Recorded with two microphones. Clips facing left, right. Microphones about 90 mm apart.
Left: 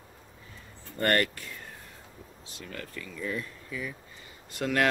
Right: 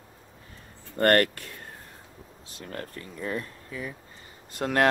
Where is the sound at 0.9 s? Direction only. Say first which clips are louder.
Right 5 dB; 50° right (ahead or behind).